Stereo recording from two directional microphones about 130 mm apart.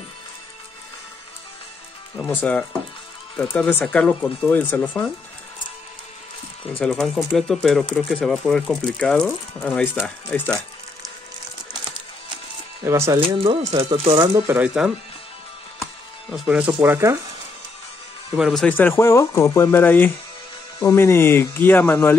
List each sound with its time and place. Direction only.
2.2 s speech: 15° left (ahead or behind)
6.8 s speech: 5° left (ahead or behind)
12.8 s speech: 20° right (ahead or behind)
13.2 s speech: 45° right (ahead or behind)
14.1 s speech: 30° right (ahead or behind)
14.5 s speech: 10° right (ahead or behind)
16.3 s speech: 5° right (ahead or behind)
18.3 s speech: centre (ahead or behind)
18.7 s speech: 15° left (ahead or behind)